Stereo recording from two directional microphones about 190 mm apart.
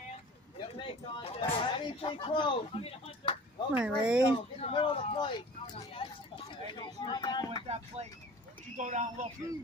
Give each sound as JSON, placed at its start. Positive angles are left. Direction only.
{"t": 0.7, "sound": "speech", "side_deg": 25}
{"t": 3.7, "sound": "speech", "side_deg": -5}
{"t": 4.3, "sound": "speech", "side_deg": 30}
{"t": 5.8, "sound": "a sound", "side_deg": 30}
{"t": 7.6, "sound": "speech", "side_deg": -30}